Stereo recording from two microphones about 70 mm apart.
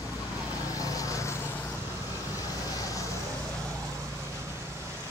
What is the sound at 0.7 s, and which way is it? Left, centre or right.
Vehicle, left.